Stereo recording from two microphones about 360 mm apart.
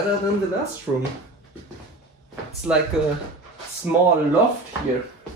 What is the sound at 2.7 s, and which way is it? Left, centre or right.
Speech, centre.